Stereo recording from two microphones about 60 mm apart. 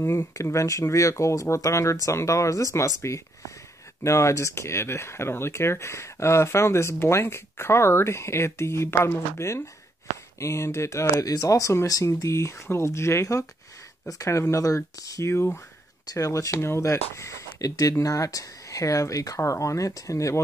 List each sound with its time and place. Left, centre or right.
0.0 s speech: left
10.4 s speech: left
17.9 s speech: left